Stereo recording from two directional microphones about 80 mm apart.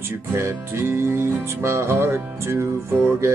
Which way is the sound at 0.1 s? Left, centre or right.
Right.